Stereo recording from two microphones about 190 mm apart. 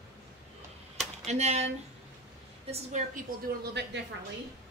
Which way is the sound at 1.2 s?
35° right (ahead or behind).